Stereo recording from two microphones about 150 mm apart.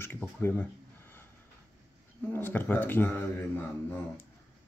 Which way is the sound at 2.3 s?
15° left (ahead or behind).